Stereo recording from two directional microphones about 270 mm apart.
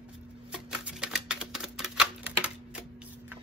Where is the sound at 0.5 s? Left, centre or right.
Centre.